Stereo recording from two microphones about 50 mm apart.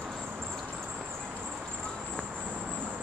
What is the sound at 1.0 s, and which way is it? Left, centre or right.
Vehicle, right.